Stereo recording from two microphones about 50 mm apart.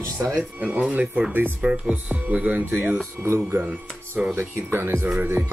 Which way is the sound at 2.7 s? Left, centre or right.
Right.